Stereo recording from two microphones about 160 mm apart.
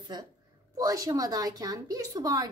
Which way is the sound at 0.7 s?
20° right (ahead or behind).